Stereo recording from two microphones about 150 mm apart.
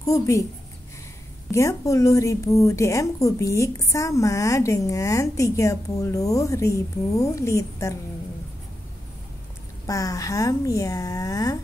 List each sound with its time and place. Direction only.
0.0 s a woman's voice: 20° left (ahead or behind)
1.5 s a woman's voice: 20° left (ahead or behind)
9.8 s a woman's voice: 20° left (ahead or behind)